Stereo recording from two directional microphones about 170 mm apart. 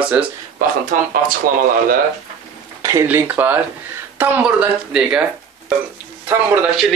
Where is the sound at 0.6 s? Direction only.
55° right (ahead or behind).